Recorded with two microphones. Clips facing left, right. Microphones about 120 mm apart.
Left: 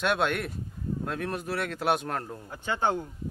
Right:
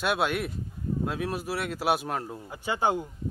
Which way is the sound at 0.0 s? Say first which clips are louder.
Even; 5° right (ahead or behind).